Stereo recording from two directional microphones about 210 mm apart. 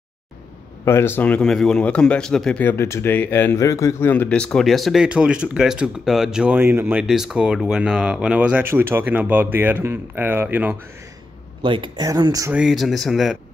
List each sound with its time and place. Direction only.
0.8 s speech: 10° left (ahead or behind); by 10.8 s 10° right (ahead or behind)
11.6 s speech: 25° right (ahead or behind)
12.5 s speech: centre (ahead or behind)